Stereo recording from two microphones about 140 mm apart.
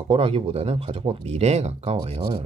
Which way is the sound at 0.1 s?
45° right (ahead or behind).